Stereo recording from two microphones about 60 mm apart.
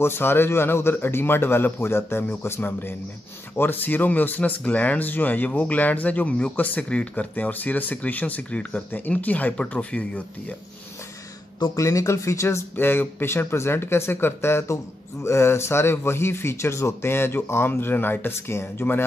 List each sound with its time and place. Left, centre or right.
0.0 s a man's voice: left
11.7 s speech: left
12.7 s a man's voice: left